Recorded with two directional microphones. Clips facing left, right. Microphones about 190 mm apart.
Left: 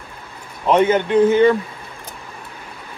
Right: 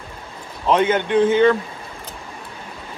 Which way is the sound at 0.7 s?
10° left (ahead or behind).